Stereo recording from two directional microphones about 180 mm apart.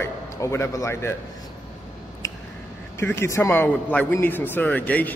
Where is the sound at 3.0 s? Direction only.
15° left (ahead or behind).